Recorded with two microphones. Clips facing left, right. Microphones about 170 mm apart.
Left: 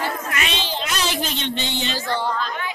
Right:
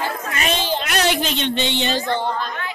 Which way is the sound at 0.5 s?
50° right (ahead or behind).